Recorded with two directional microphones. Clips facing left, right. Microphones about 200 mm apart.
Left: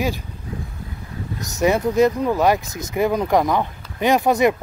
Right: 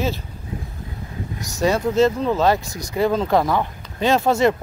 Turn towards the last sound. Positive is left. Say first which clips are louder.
# left 1 dB
turn(degrees=15)  # may be behind; listen again after turning